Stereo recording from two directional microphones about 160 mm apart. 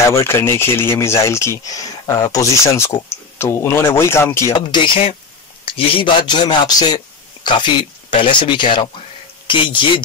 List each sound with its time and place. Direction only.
0.1 s speech: 15° left (ahead or behind); by 10.0 s 30° left (ahead or behind)